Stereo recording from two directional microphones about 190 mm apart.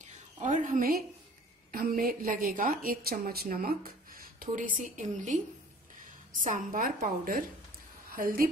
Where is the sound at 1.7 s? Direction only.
50° right (ahead or behind).